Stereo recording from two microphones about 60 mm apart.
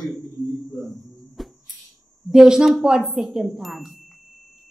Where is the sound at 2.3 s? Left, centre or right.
Centre.